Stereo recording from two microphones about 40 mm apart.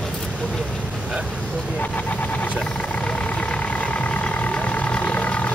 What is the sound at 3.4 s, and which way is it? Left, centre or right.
Vehicle, left.